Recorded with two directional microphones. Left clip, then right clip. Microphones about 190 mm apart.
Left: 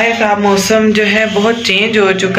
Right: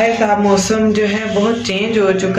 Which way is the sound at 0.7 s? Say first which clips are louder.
Left 5 dB; centre (ahead or behind).